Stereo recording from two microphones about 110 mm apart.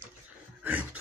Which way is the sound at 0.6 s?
15° right (ahead or behind).